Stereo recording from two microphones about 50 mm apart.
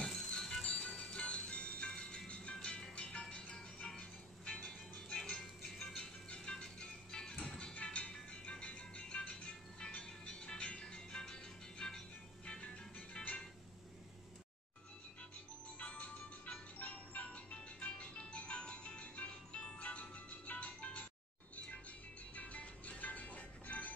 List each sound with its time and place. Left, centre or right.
0.0 s music: centre
15.8 s music: left
22.3 s music: left